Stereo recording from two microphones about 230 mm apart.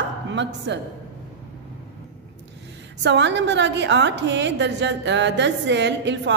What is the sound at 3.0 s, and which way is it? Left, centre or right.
A woman's voice, right.